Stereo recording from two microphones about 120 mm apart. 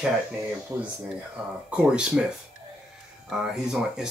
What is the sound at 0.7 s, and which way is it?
Speech, 25° right (ahead or behind).